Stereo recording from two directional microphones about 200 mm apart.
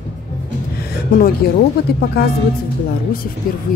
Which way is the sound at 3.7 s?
45° left (ahead or behind).